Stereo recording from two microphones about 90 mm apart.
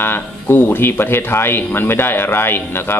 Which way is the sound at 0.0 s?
25° left (ahead or behind).